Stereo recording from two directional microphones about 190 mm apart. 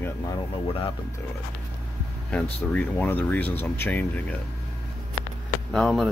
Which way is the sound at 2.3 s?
10° left (ahead or behind).